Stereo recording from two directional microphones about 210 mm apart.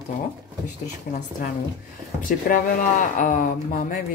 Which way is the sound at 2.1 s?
40° left (ahead or behind).